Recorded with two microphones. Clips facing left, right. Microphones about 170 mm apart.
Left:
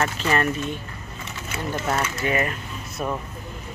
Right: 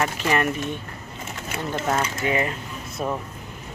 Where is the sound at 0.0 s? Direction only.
15° right (ahead or behind).